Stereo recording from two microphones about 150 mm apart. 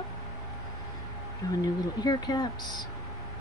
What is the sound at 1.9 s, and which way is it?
Speech, 25° left (ahead or behind).